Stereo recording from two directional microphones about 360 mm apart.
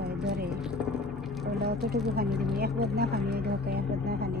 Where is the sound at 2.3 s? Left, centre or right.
Centre.